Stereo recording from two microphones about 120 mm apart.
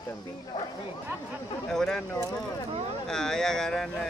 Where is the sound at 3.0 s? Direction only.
5° left (ahead or behind).